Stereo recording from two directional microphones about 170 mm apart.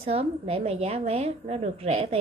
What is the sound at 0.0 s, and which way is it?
A woman's voice, 35° right (ahead or behind).